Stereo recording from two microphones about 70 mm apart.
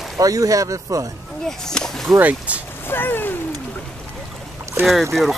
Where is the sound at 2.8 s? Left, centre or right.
Left.